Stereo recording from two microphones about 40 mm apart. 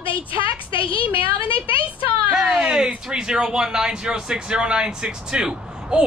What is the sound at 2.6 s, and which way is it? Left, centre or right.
Speech, centre.